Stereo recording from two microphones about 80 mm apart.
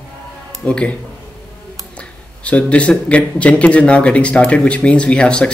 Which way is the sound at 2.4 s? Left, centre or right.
Centre.